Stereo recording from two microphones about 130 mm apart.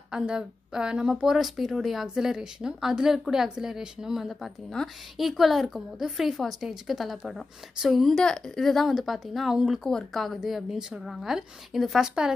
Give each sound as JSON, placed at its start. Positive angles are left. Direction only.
{"t": 0.1, "sound": "speech", "side_deg": -5}